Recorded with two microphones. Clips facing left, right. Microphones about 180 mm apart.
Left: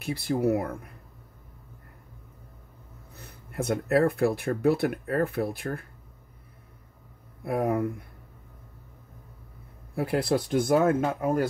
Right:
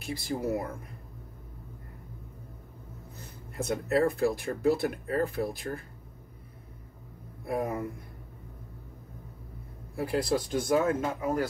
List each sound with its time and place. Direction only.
0.0 s speech: 60° left (ahead or behind)
3.5 s speech: 60° left (ahead or behind)
7.4 s speech: 60° left (ahead or behind)
9.9 s speech: 60° left (ahead or behind)